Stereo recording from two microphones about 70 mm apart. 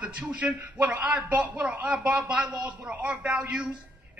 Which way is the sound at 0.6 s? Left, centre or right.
Right.